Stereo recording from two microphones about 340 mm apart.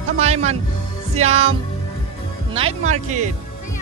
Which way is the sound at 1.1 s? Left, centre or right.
Centre.